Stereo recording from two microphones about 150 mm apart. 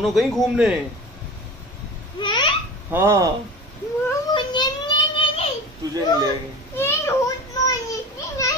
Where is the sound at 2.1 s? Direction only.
30° left (ahead or behind).